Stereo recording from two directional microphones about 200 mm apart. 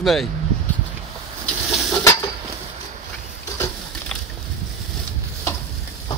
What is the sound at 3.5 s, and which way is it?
Patter, 15° left (ahead or behind).